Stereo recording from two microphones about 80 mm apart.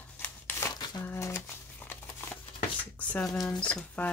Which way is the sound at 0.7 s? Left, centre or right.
Left.